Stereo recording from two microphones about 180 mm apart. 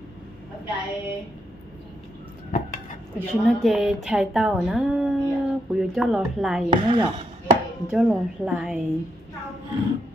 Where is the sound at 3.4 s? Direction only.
Centre (ahead or behind).